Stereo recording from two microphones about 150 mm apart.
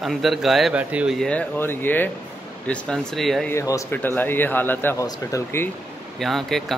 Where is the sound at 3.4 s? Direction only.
20° left (ahead or behind).